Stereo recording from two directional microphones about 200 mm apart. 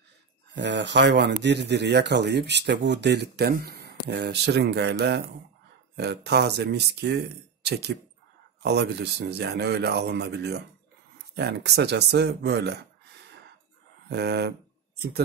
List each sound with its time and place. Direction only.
0.6 s speech: 60° right (ahead or behind)
14.0 s speech: 55° right (ahead or behind)